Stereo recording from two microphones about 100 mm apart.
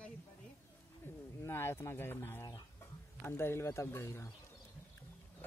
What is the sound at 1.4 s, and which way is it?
Speech, 25° left (ahead or behind).